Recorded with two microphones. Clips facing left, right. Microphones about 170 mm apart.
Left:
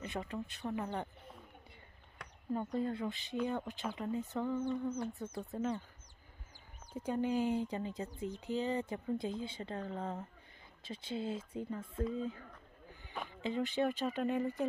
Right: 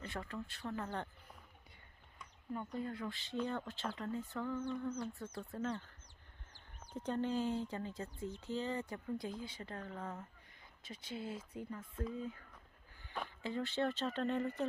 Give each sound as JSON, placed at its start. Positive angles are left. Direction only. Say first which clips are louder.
{"t": 0.0, "sound": "speech", "louder": "left 4 dB", "side_deg": 20}
{"t": 2.2, "sound": "a sound", "louder": "left 4 dB", "side_deg": 75}
{"t": 2.5, "sound": "speech", "louder": "left 6 dB", "side_deg": 35}
{"t": 6.9, "sound": "speech", "louder": "left 3 dB", "side_deg": 10}